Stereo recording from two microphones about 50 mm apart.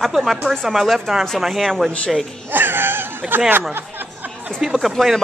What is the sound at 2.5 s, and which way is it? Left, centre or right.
Speech, right.